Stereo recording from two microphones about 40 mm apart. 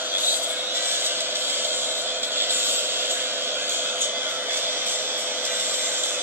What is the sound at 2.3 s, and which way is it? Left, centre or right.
Vehicle, right.